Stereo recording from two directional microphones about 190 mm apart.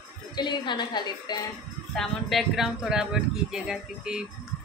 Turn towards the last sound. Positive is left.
turn(degrees=-5)  # may be behind; listen again after turning